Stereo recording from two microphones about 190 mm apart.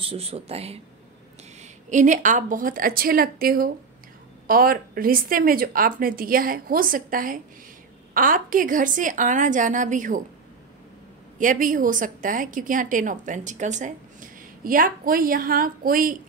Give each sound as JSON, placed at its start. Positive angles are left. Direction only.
{"t": 0.0, "sound": "a woman's voice", "side_deg": -30}
{"t": 11.3, "sound": "a woman's voice", "side_deg": -45}